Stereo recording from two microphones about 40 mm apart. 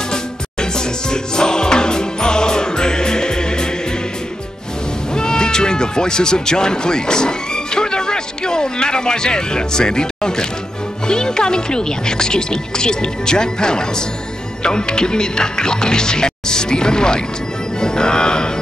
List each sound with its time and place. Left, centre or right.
0.1 s music: centre
5.1 s speech: centre
17.7 s music: centre